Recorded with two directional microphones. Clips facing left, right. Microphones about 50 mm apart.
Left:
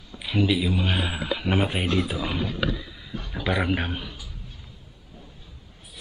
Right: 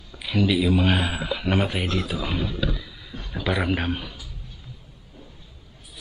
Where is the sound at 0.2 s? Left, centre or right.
Centre.